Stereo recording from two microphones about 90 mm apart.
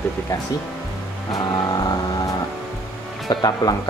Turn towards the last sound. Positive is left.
turn(degrees=45)  # may be behind; listen again after turning